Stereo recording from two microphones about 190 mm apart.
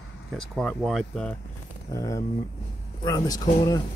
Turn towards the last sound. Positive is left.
turn(degrees=20)  # may be behind; listen again after turning